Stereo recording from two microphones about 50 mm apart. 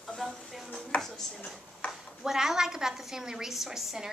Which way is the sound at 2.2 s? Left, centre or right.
Centre.